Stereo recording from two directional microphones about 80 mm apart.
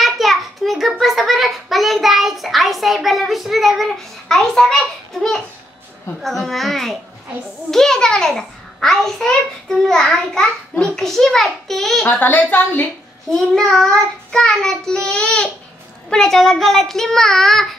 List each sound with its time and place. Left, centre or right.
0.0 s a sound: centre
6.2 s a child's voice: centre
12.1 s speech: left
13.3 s a child's voice: centre
14.3 s child singing: centre
16.1 s a child's voice: centre